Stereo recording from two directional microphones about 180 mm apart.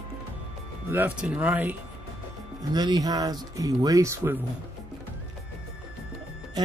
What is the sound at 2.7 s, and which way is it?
Speech, 20° right (ahead or behind).